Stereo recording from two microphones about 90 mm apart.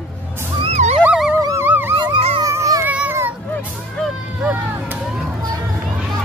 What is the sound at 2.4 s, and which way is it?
Music, 40° right (ahead or behind).